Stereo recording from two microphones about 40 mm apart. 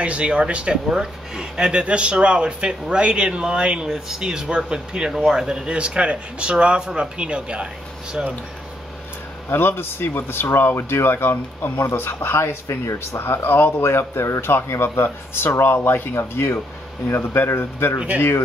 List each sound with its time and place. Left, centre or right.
0.0 s speech: right
0.8 s speech: centre
9.5 s speech: left
11.8 s speech: left
13.7 s speech: left